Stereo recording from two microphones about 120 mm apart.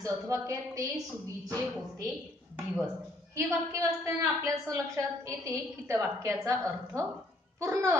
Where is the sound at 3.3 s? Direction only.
25° right (ahead or behind).